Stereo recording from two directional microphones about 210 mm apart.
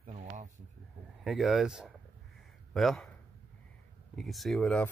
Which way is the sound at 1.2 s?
Centre (ahead or behind).